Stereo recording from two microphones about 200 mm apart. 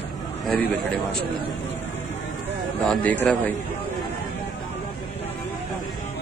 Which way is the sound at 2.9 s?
10° left (ahead or behind).